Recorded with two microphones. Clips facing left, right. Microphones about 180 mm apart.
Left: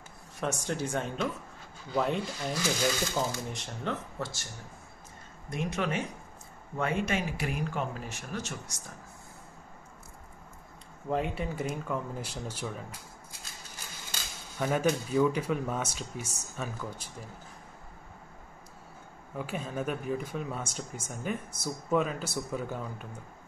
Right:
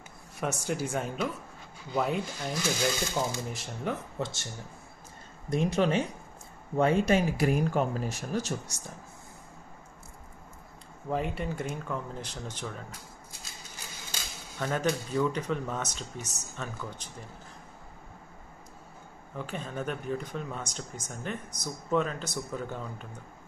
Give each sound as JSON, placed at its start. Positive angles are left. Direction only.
{"t": 0.4, "sound": "speech", "side_deg": -5}
{"t": 4.2, "sound": "speech", "side_deg": -20}
{"t": 5.5, "sound": "speech", "side_deg": -30}
{"t": 11.1, "sound": "speech", "side_deg": 0}
{"t": 14.6, "sound": "speech", "side_deg": 10}
{"t": 19.3, "sound": "speech", "side_deg": 5}